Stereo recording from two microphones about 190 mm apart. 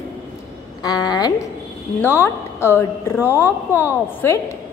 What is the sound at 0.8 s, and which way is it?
Speech, 20° left (ahead or behind).